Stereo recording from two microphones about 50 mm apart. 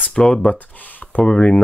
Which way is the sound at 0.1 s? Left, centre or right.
Centre.